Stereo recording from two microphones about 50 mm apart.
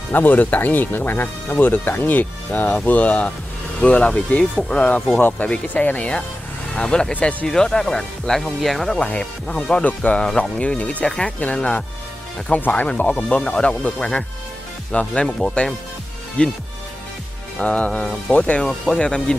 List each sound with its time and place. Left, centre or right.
0.1 s speech: left
7.4 s speech: centre
9.0 s speech: left
11.1 s speech: centre
11.3 s speech: left
12.5 s speech: left
12.8 s speech: left
16.4 s speech: left
17.6 s speech: left